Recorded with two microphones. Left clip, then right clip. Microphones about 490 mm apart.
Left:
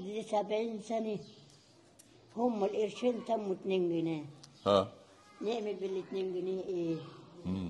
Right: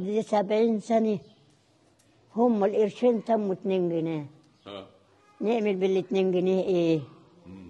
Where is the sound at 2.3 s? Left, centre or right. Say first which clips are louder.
Right 9 dB; right.